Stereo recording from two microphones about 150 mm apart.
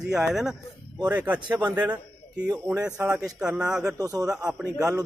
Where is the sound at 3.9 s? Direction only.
25° right (ahead or behind).